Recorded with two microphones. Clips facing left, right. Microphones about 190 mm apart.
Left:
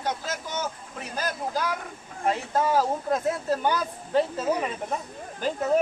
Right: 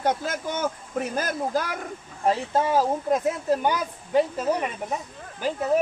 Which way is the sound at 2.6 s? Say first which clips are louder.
Left 1 dB; 15° right (ahead or behind).